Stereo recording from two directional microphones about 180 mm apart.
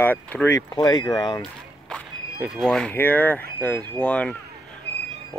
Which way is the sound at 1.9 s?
Centre (ahead or behind).